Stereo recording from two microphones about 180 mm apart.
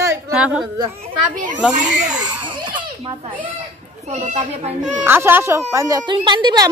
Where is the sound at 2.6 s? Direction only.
25° right (ahead or behind).